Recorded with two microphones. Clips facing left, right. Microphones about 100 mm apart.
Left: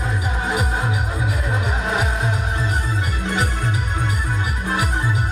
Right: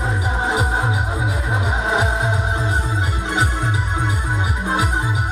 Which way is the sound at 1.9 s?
20° right (ahead or behind).